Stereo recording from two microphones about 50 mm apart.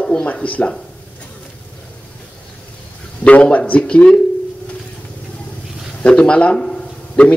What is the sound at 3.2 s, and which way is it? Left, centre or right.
Speech, left.